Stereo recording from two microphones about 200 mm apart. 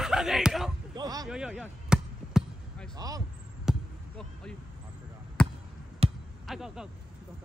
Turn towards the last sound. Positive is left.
turn(degrees=-5)  # may be behind; listen again after turning